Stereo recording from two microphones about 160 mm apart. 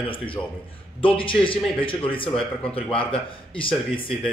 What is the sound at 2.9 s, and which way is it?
Speech, 35° left (ahead or behind).